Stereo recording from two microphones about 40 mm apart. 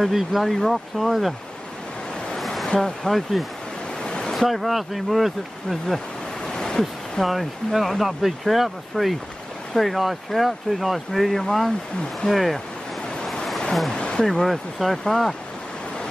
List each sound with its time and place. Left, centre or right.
0.0 s speech: centre
2.3 s waves: centre
2.8 s speech: centre
4.0 s a sound: centre
4.4 s speech: centre
6.4 s waves: centre
6.8 s speech: centre
13.9 s a sound: left
14.4 s speech: centre